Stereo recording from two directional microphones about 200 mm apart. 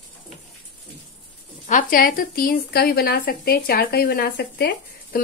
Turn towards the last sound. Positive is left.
turn(degrees=50)  # may be behind; listen again after turning